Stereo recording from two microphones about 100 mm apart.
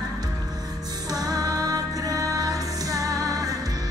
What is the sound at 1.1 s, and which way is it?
Music, 40° right (ahead or behind).